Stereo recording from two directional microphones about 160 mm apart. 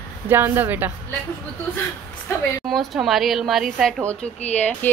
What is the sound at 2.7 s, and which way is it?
Speech, centre (ahead or behind).